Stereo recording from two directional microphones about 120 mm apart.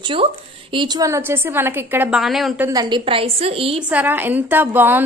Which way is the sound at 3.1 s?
50° right (ahead or behind).